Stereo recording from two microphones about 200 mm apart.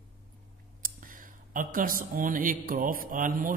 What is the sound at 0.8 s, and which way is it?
Speech, 45° right (ahead or behind).